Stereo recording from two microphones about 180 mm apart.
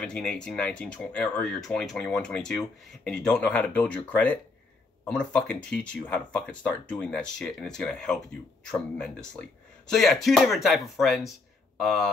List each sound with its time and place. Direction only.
0.0 s speech: 5° left (ahead or behind)